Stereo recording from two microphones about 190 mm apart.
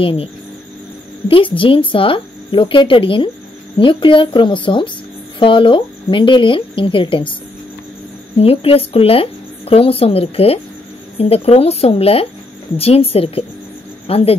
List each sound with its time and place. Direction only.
0.0 s speech: 30° left (ahead or behind)
1.3 s speech: 25° left (ahead or behind)
8.4 s speech: 30° left (ahead or behind)